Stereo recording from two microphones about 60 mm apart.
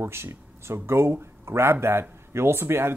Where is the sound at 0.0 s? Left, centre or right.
Right.